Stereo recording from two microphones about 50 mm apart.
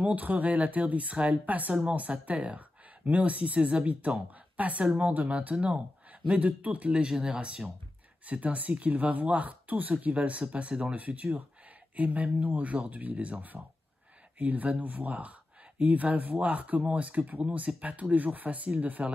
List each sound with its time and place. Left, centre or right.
0.0 s speech: right